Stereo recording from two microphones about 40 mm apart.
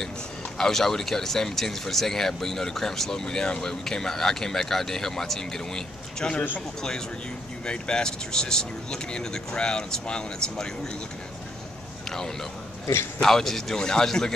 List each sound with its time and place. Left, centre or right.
0.6 s speech: centre
7.6 s speech: left
13.2 s speech: centre